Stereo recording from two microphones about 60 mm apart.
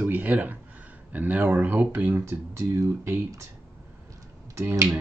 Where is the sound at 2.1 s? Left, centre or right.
Right.